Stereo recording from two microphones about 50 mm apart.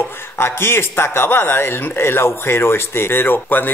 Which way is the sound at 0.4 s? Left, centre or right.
Left.